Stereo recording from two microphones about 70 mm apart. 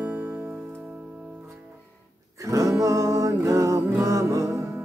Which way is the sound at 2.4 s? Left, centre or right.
Right.